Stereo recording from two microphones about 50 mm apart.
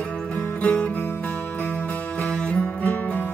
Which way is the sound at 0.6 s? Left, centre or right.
Left.